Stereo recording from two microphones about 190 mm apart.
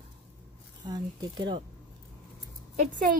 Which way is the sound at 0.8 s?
25° right (ahead or behind).